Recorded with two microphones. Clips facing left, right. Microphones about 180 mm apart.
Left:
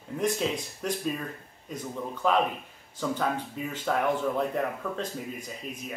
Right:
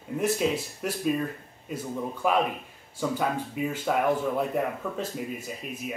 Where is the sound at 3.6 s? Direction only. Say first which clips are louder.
Right 5 dB; 10° right (ahead or behind).